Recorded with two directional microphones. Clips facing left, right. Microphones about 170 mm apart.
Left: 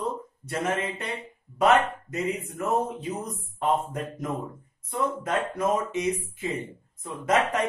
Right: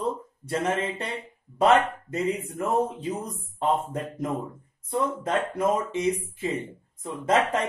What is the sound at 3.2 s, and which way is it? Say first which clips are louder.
Speech: even; 30° right (ahead or behind).